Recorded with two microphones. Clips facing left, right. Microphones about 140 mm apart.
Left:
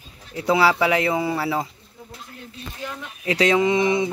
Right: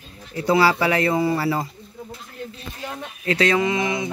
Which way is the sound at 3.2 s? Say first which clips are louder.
Left 1 dB; 15° left (ahead or behind).